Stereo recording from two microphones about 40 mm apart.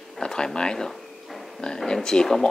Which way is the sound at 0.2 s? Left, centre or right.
Centre.